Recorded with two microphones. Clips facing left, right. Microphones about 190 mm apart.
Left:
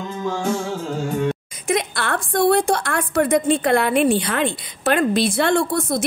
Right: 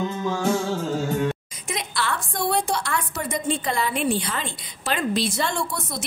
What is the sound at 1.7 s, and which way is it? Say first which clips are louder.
A woman's voice: left 6 dB; 55° left (ahead or behind).